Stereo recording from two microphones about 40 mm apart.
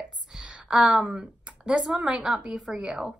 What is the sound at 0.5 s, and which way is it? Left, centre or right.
A woman's voice, right.